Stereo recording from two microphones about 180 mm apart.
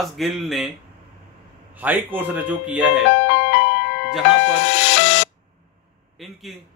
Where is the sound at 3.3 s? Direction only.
90° left.